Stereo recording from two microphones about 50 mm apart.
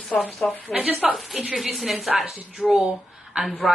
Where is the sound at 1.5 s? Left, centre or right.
Centre.